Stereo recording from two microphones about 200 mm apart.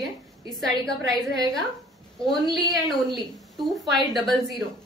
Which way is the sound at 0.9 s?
20° right (ahead or behind).